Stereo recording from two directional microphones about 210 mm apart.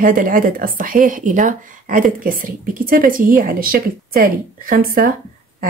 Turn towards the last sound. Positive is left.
turn(degrees=-45)  # may be behind; listen again after turning